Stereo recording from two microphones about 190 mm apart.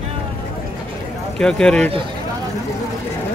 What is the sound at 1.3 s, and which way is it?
Speech, 5° left (ahead or behind).